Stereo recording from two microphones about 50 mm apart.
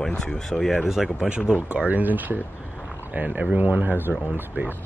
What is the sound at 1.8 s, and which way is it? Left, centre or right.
Speech, right.